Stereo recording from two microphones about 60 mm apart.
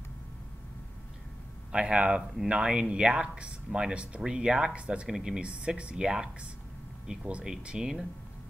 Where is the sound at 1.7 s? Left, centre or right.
Centre.